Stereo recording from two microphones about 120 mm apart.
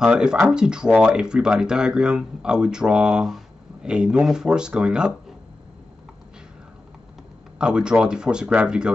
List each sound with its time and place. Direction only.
0.0 s speech: 5° right (ahead or behind)
7.5 s speech: 5° right (ahead or behind)